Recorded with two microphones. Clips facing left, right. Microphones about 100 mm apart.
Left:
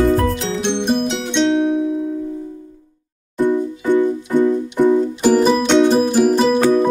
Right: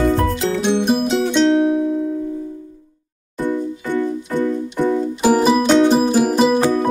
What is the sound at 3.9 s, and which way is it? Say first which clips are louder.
Music: left 4 dB; 15° left (ahead or behind).